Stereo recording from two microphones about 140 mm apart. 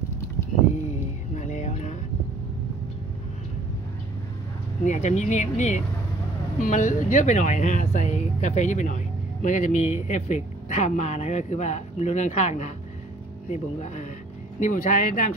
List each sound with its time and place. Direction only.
1.3 s music: 55° left (ahead or behind)
4.8 s speech: 55° left (ahead or behind)